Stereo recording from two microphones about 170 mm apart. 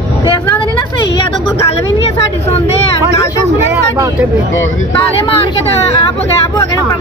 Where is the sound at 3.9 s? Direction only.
20° right (ahead or behind).